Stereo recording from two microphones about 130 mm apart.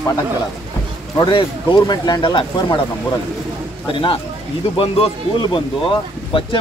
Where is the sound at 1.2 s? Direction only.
40° left (ahead or behind).